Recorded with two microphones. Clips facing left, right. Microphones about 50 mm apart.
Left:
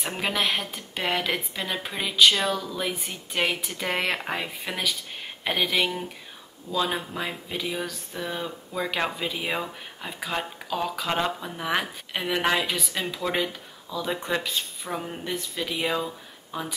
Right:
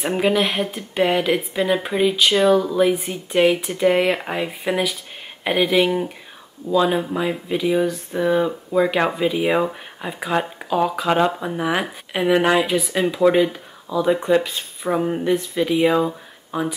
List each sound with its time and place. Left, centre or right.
0.2 s speech: centre
2.6 s speech: right
2.9 s speech: centre
14.0 s speech: centre